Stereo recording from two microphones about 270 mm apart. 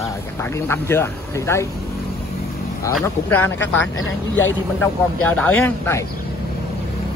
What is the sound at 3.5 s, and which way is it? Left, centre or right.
Speech, left.